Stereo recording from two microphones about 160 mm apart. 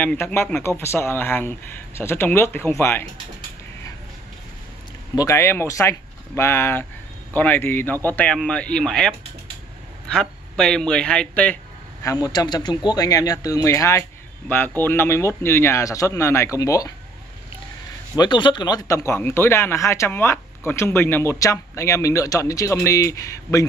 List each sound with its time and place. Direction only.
0.0 s speech: 10° left (ahead or behind)
5.1 s speech: 20° left (ahead or behind)
12.0 s speech: 20° left (ahead or behind)
18.1 s speech: 25° left (ahead or behind)